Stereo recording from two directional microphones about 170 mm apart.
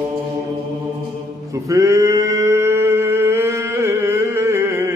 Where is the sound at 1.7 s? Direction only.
20° right (ahead or behind).